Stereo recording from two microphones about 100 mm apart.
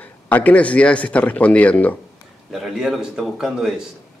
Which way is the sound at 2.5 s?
5° right (ahead or behind).